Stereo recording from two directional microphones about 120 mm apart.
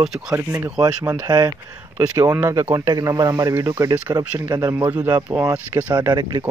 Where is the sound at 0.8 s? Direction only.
30° right (ahead or behind).